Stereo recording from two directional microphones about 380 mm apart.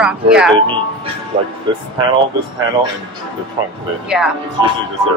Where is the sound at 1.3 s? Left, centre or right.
Centre.